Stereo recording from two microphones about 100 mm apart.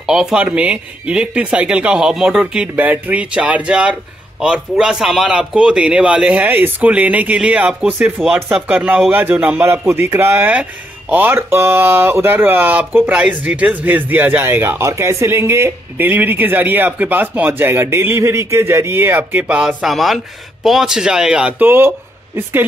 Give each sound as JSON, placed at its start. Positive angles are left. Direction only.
{"t": 0.0, "sound": "a man's voice", "side_deg": -5}
{"t": 9.7, "sound": "a man's voice", "side_deg": -25}